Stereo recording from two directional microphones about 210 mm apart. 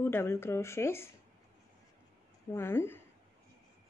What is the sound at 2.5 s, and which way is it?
Speech, 10° left (ahead or behind).